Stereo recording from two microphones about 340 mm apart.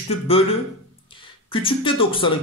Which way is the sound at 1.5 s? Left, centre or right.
Centre.